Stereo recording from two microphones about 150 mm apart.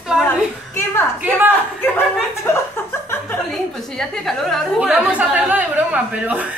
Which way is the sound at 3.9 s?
5° left (ahead or behind).